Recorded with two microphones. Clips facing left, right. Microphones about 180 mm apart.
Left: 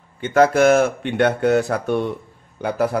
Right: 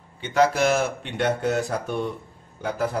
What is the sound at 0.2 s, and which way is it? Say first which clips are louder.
A man's voice: left 6 dB; 50° left (ahead or behind).